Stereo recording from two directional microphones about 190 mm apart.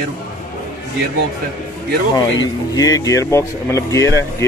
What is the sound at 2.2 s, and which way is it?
Speech, 20° left (ahead or behind).